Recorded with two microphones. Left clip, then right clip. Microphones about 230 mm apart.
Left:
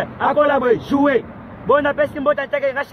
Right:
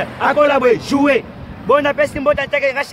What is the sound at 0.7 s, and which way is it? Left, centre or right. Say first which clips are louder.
A man's voice: right 3 dB; centre.